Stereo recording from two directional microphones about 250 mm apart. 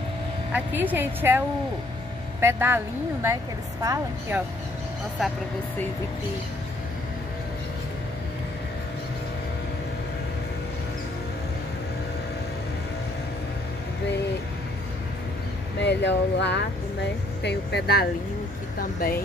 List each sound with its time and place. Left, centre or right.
0.5 s a woman's voice: centre
2.4 s a woman's voice: centre
15.8 s speech: left